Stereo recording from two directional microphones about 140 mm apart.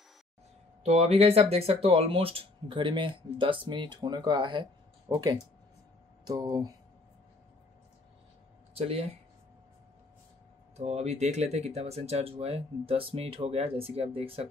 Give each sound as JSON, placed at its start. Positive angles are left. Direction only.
{"t": 0.8, "sound": "speech", "side_deg": -50}
{"t": 8.7, "sound": "speech", "side_deg": -45}
{"t": 10.8, "sound": "speech", "side_deg": -50}